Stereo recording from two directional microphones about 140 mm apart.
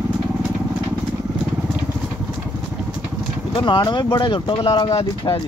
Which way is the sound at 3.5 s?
35° left (ahead or behind).